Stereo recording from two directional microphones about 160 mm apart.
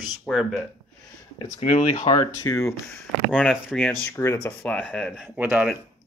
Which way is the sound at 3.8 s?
10° left (ahead or behind).